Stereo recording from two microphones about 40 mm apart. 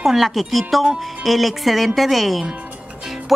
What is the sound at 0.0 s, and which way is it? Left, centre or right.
A woman's voice, centre.